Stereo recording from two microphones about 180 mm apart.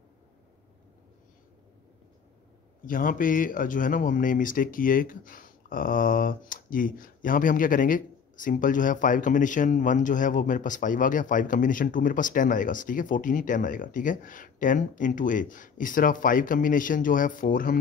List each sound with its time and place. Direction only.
2.8 s speech: 50° left (ahead or behind)